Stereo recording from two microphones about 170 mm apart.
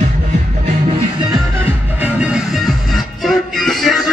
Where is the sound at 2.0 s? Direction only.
5° right (ahead or behind).